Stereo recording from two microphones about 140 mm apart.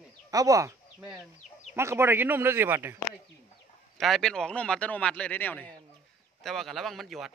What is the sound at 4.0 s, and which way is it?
A man's voice, centre (ahead or behind).